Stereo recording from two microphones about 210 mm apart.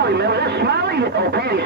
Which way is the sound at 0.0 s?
50° right (ahead or behind).